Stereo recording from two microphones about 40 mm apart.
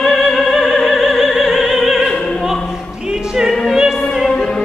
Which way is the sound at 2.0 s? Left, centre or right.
Left.